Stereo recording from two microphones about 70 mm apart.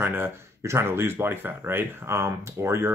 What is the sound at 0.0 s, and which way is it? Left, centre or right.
Speech, right.